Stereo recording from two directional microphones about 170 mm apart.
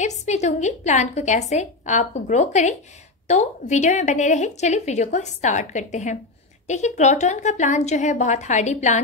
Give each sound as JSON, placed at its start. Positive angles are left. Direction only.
{"t": 0.0, "sound": "a woman's voice", "side_deg": 45}